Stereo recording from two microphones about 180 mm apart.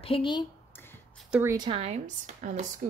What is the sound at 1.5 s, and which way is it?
Speech, 30° right (ahead or behind).